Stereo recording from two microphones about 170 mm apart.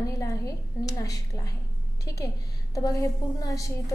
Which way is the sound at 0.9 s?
20° left (ahead or behind).